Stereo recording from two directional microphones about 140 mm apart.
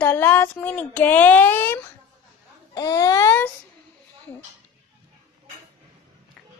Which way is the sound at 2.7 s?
25° left (ahead or behind).